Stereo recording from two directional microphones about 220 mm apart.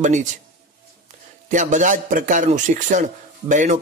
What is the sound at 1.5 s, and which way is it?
A man's voice, 35° right (ahead or behind).